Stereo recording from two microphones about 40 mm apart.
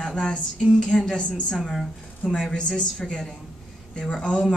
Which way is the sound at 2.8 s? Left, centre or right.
Centre.